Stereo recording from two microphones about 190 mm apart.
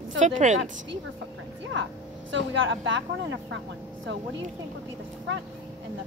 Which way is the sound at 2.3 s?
80° right.